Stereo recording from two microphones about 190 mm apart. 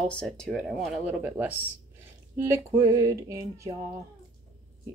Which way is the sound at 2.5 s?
15° right (ahead or behind).